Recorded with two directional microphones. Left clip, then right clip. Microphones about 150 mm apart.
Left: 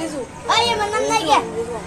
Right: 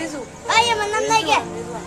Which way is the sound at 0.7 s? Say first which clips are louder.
Even; 40° right (ahead or behind).